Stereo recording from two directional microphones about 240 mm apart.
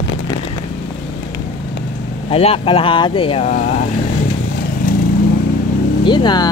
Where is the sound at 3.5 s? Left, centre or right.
Left.